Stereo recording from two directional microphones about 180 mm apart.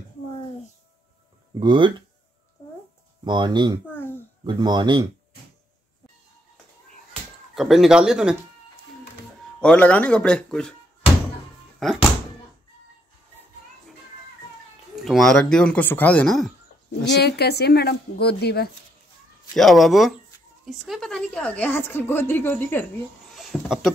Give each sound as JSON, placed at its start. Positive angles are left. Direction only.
{"t": 1.6, "sound": "speech", "side_deg": -25}
{"t": 3.3, "sound": "speech", "side_deg": -25}
{"t": 7.5, "sound": "speech", "side_deg": 0}
{"t": 9.6, "sound": "speech", "side_deg": 5}
{"t": 11.8, "sound": "speech", "side_deg": 0}
{"t": 15.0, "sound": "speech", "side_deg": 0}
{"t": 17.0, "sound": "a woman's voice", "side_deg": 70}
{"t": 19.5, "sound": "a woman's voice", "side_deg": 0}
{"t": 23.3, "sound": "speech", "side_deg": 0}